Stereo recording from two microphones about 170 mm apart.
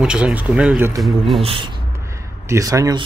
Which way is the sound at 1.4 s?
30° right (ahead or behind).